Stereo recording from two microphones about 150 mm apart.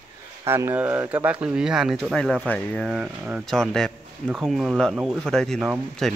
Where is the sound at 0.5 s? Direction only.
15° right (ahead or behind); by 2.9 s 10° left (ahead or behind).